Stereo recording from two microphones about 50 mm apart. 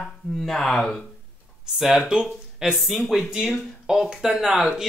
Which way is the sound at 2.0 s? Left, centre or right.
Centre.